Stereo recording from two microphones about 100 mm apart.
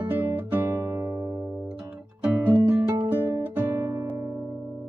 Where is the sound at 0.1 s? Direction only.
20° right (ahead or behind).